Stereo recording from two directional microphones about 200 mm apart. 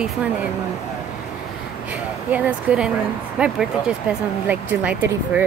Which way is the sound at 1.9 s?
10° right (ahead or behind).